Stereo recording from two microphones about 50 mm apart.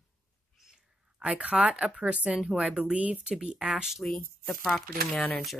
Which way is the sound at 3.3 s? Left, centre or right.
Centre.